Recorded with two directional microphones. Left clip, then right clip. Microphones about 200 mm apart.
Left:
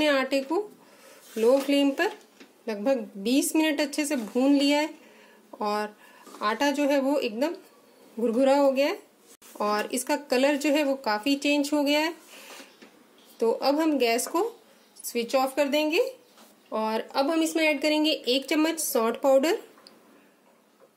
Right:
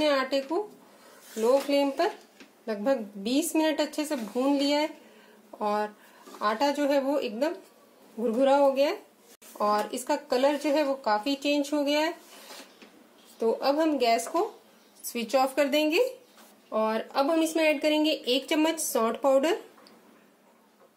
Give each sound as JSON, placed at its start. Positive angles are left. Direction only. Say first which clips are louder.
{"t": 0.0, "sound": "speech", "louder": "left 1 dB", "side_deg": 30}
{"t": 9.6, "sound": "speech", "louder": "right 1 dB", "side_deg": 30}
{"t": 13.4, "sound": "speech", "louder": "left 1 dB", "side_deg": 25}
{"t": 15.1, "sound": "speech", "louder": "even", "side_deg": 10}
{"t": 16.7, "sound": "speech", "louder": "even", "side_deg": 15}